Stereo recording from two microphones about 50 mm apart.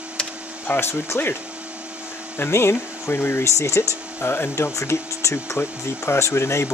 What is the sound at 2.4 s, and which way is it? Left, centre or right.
Speech, left.